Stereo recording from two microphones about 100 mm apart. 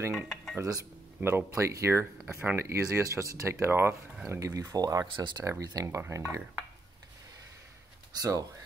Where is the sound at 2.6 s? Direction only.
30° right (ahead or behind).